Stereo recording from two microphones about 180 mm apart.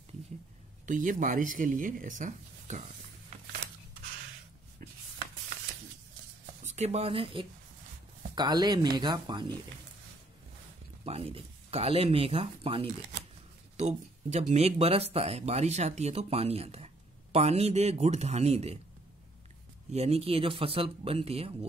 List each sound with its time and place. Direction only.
0.8 s speech: 45° right (ahead or behind)
6.6 s speech: 40° right (ahead or behind)
11.1 s speech: 35° right (ahead or behind)
19.9 s speech: 35° right (ahead or behind)